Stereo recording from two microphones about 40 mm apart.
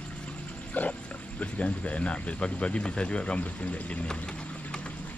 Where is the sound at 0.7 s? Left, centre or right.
Left.